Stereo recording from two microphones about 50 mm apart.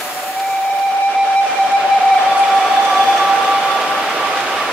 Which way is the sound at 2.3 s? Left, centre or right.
Centre.